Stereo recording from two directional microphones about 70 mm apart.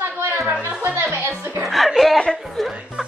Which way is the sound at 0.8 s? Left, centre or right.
Right.